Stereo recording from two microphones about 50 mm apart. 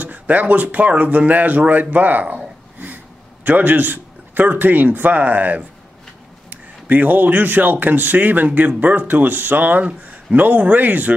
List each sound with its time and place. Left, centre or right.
0.0 s a man's voice: right